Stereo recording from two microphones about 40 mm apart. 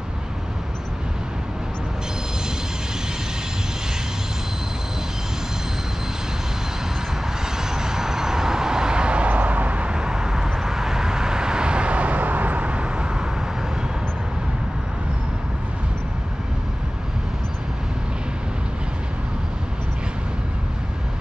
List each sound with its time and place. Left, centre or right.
7.5 s vehicle: centre; by 9.9 s right
9.9 s vehicle: centre